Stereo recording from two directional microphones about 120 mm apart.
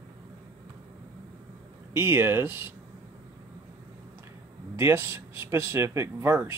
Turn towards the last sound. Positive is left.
turn(degrees=-20)  # may be behind; listen again after turning